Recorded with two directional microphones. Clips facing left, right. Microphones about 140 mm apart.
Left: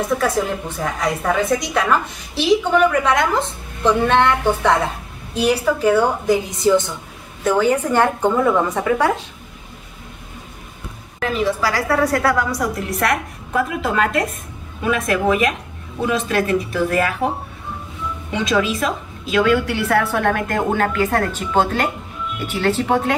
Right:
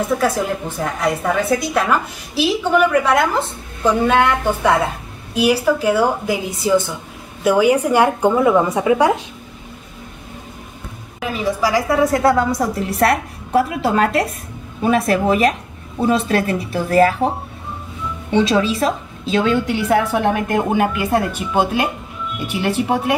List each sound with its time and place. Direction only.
0.7 s a woman's voice: 5° right (ahead or behind)
11.1 s a woman's voice: 10° right (ahead or behind); by 17.3 s 30° right (ahead or behind)
18.3 s a woman's voice: 30° right (ahead or behind); by 23.1 s 10° right (ahead or behind)